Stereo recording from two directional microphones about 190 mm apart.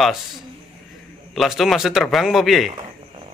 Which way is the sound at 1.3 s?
Centre (ahead or behind).